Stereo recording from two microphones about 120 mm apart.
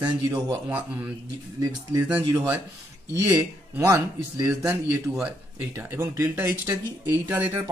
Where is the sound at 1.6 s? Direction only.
25° right (ahead or behind).